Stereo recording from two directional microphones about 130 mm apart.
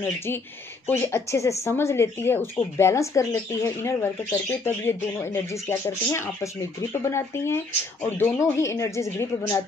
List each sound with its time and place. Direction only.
0.8 s speech: 15° left (ahead or behind)